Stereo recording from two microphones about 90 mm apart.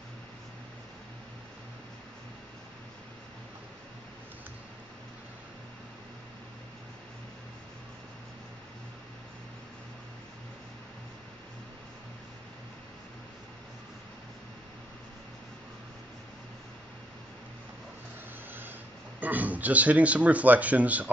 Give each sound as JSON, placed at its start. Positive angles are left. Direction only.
{"t": 19.1, "sound": "speech", "side_deg": -20}